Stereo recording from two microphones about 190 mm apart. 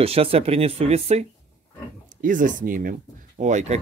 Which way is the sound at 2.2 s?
45° right (ahead or behind).